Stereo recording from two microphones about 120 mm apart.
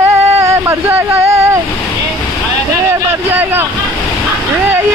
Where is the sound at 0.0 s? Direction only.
25° right (ahead or behind).